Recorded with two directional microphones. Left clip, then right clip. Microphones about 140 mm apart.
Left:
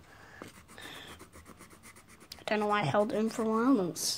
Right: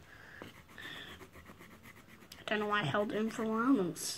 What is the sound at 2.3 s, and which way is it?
Speech, 70° left (ahead or behind).